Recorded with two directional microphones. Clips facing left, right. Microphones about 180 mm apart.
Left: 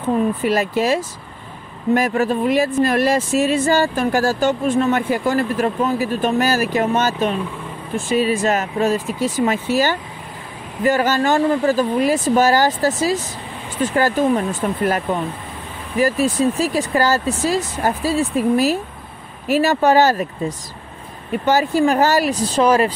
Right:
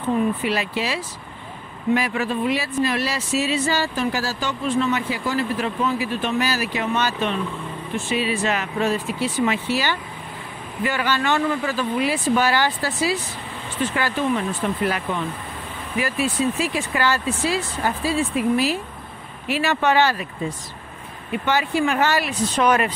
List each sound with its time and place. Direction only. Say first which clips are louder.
0.4 s speech: left 6 dB; 45° left (ahead or behind)